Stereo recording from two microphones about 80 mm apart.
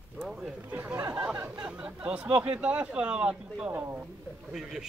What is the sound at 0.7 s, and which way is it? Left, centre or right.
Speech, right.